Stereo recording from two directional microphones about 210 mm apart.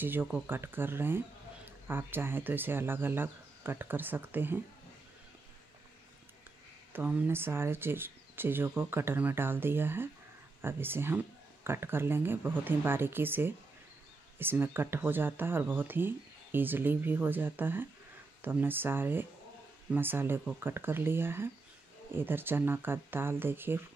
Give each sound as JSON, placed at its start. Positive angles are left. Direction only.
{"t": 0.0, "sound": "speech", "side_deg": -10}
{"t": 6.9, "sound": "speech", "side_deg": -10}